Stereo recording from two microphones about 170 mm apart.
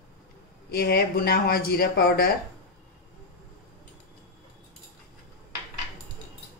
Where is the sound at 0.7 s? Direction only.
65° left (ahead or behind).